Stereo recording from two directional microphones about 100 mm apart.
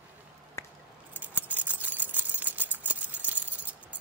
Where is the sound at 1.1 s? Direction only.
15° right (ahead or behind).